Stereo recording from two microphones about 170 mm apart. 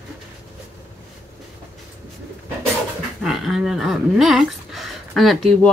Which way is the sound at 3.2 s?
Centre (ahead or behind).